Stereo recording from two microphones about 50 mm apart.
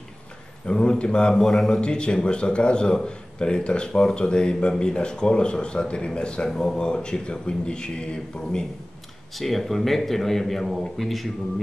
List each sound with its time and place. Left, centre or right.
0.7 s speech: centre
9.3 s speech: centre